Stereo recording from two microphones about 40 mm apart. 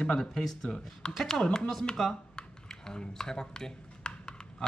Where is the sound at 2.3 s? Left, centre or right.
Centre.